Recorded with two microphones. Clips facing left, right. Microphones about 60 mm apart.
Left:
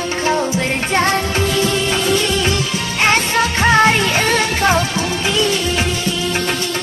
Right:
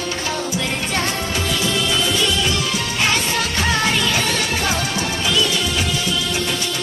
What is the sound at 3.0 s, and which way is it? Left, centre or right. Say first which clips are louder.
Music: left 7 dB; left.